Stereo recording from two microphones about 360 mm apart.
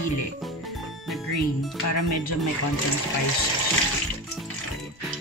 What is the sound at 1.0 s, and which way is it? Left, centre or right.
Music, centre.